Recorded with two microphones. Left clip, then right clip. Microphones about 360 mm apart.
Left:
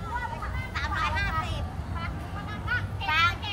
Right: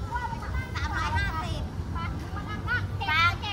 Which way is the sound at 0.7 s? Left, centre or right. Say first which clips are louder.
Left 2 dB; centre.